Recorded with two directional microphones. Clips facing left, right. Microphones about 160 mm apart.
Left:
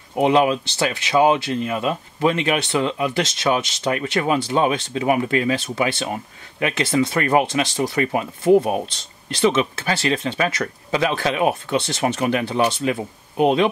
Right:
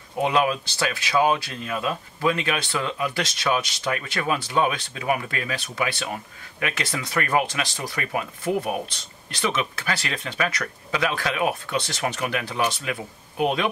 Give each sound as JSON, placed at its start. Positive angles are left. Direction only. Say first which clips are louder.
{"t": 0.2, "sound": "speech", "louder": "left 5 dB", "side_deg": 25}